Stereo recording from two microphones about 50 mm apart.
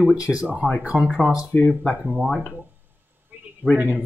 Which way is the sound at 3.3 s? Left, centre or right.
Right.